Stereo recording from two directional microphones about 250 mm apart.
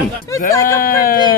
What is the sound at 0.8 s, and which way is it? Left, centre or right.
Speech, left.